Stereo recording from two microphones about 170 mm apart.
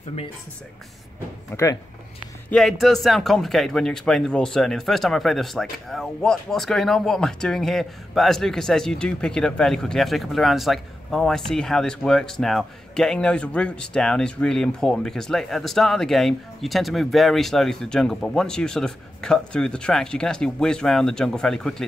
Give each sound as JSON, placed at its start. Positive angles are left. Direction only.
{"t": 1.5, "sound": "speech", "side_deg": 20}
{"t": 2.5, "sound": "speech", "side_deg": 0}